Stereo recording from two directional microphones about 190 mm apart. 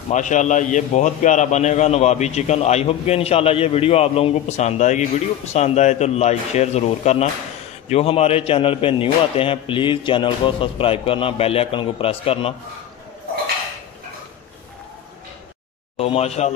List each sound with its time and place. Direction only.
0.1 s a man's voice: 40° left (ahead or behind)
16.0 s a man's voice: 35° left (ahead or behind)